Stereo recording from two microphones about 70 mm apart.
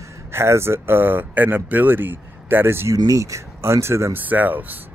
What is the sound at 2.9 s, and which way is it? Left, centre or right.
Speech, right.